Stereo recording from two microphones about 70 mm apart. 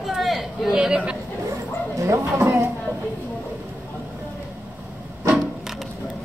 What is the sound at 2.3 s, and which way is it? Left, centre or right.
Speech, right.